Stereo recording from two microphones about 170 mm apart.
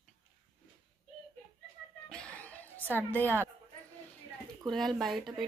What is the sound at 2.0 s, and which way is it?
Chuckle, 5° left (ahead or behind).